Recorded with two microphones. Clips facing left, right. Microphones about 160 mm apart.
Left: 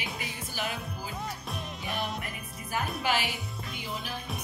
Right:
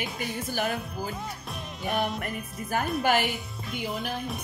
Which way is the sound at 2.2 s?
50° right (ahead or behind).